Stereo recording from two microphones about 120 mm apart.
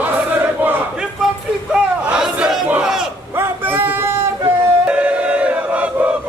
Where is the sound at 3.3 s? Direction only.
15° right (ahead or behind).